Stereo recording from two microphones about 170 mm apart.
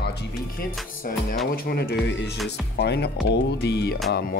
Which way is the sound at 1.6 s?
65° left (ahead or behind).